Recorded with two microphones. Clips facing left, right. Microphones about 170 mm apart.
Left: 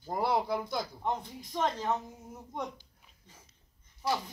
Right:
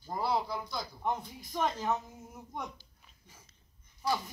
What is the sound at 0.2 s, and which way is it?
Speech, 55° left (ahead or behind).